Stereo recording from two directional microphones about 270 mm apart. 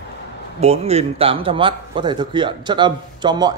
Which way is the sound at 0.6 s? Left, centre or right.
Right.